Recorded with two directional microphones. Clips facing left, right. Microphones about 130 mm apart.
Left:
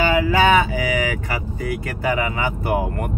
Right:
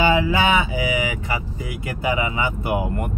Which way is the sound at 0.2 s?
20° right (ahead or behind).